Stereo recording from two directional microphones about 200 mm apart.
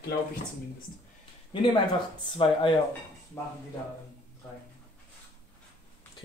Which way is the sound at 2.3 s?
25° left (ahead or behind).